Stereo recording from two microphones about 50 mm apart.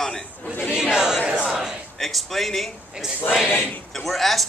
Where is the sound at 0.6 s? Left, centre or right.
Centre.